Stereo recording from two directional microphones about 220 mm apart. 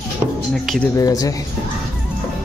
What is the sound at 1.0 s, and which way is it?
Speech, 15° left (ahead or behind).